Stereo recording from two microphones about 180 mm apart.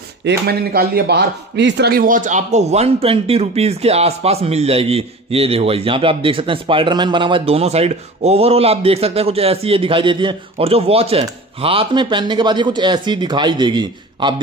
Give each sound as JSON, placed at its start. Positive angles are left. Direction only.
{"t": 0.2, "sound": "speech", "side_deg": -65}